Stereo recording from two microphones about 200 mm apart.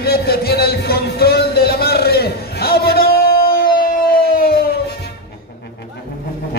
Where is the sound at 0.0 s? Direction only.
50° left (ahead or behind).